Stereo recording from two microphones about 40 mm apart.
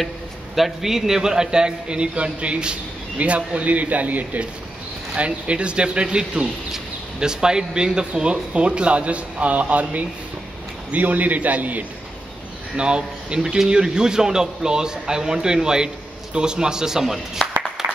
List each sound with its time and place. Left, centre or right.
0.6 s speech: centre; by 4.4 s right
5.1 s speech: right
12.7 s a man's voice: right
17.4 s a sound: left
17.8 s clapping: centre